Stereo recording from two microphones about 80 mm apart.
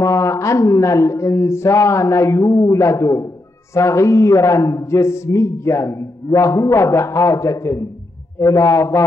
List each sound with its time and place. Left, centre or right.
0.0 s a man's voice: left